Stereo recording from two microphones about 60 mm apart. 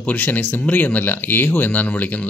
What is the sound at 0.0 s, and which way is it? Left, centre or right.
Speech, left.